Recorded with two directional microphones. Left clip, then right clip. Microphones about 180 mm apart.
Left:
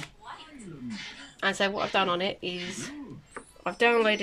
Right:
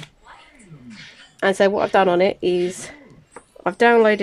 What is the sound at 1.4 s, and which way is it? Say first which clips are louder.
Speech: right 10 dB; 45° right (ahead or behind).